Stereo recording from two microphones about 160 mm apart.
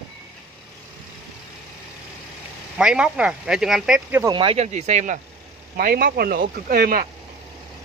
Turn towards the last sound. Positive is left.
turn(degrees=-65)  # may be behind; listen again after turning